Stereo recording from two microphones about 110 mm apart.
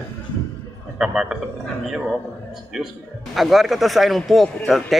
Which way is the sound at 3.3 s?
Centre (ahead or behind).